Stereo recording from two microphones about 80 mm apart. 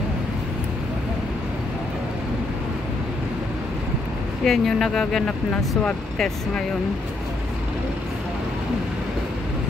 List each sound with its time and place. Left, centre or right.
4.5 s speech: centre